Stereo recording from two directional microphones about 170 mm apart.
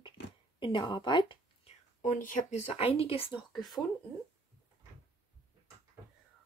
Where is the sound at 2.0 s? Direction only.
50° left (ahead or behind); by 3.8 s 30° left (ahead or behind).